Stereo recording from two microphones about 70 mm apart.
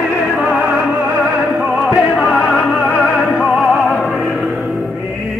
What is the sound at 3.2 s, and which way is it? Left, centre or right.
Music, centre.